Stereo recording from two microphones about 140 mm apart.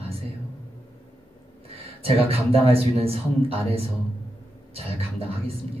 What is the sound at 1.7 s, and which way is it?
Speech, 45° right (ahead or behind).